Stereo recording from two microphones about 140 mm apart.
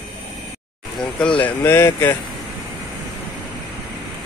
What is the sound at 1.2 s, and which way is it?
Speech, 10° left (ahead or behind).